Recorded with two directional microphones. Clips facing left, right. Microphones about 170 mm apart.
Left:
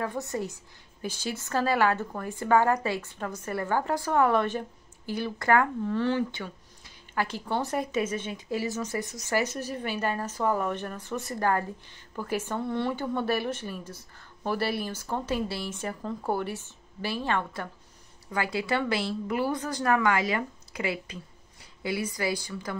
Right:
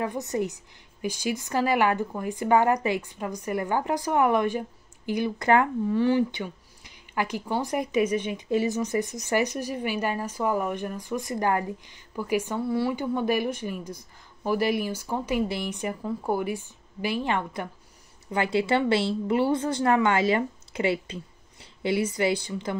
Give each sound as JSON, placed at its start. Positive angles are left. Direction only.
{"t": 0.0, "sound": "speech", "side_deg": -15}